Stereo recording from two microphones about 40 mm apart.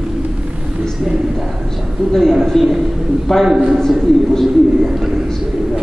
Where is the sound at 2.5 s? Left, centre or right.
Centre.